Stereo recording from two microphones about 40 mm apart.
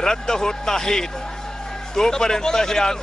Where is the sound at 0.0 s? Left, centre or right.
Centre.